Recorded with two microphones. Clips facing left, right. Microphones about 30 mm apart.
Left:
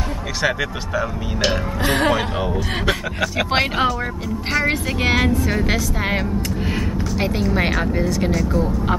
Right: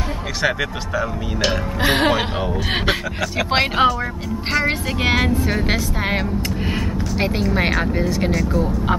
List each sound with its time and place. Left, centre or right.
0.4 s speech: centre
1.9 s speech: right
3.4 s speech: centre
8.4 s speech: centre